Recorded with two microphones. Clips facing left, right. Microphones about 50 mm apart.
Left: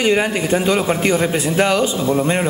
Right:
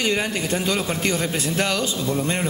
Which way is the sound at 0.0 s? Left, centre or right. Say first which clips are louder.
Left 6 dB; centre.